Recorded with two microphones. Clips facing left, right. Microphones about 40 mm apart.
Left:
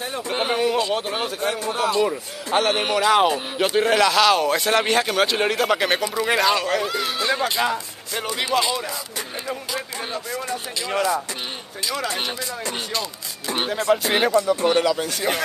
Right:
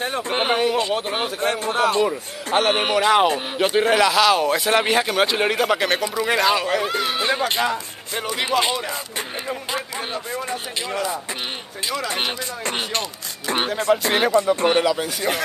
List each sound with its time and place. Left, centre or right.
0.0 s a sound: right
1.1 s a man's voice: right
2.0 s a man's voice: centre
2.7 s speech: right
5.8 s speech: centre
7.2 s speech: centre
7.6 s speech: centre
8.5 s a man's voice: right
12.1 s speech: right
12.6 s music: right
13.8 s speech: centre
14.3 s speech: right
14.8 s speech: centre